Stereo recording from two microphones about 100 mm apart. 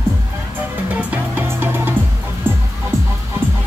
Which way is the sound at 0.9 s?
20° right (ahead or behind).